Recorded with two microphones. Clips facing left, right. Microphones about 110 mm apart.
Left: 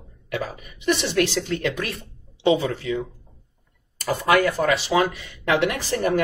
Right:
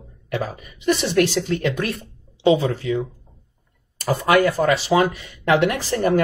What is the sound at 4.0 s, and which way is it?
Speech, 25° right (ahead or behind).